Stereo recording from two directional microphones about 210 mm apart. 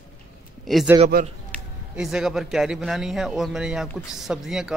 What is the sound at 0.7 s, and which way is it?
Speech, centre (ahead or behind).